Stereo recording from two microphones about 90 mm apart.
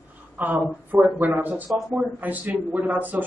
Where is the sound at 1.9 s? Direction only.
20° right (ahead or behind).